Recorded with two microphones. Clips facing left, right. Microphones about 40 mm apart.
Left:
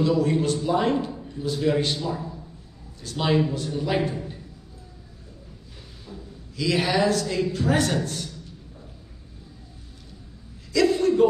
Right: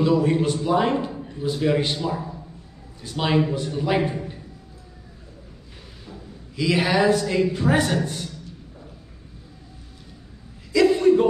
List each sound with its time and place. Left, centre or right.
0.0 s a woman's voice: centre
4.0 s a man's voice: centre
6.5 s a woman's voice: centre
10.7 s a sound: centre